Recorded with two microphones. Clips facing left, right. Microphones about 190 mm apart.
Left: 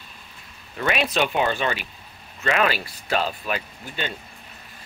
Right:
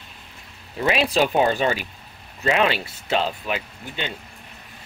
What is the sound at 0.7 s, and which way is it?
Speech, 30° right (ahead or behind).